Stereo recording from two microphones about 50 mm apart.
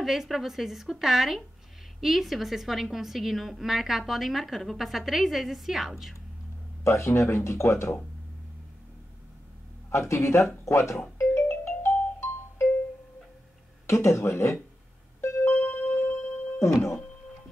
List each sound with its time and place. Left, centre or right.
0.0 s a woman's voice: centre
6.8 s speech: left
9.8 s speech: left
11.1 s music: left
13.8 s speech: left
14.2 s speech: left
15.1 s music: left
15.5 s music: left
15.9 s music: left
16.5 s speech: left